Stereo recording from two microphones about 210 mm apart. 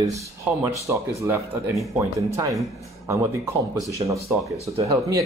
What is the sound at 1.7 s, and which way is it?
Speech, centre (ahead or behind).